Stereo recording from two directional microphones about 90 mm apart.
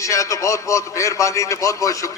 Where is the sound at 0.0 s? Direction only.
35° left (ahead or behind).